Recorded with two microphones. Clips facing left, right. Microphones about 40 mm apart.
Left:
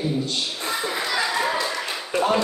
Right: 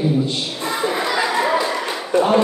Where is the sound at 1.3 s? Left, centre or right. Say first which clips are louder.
Right 5 dB; right.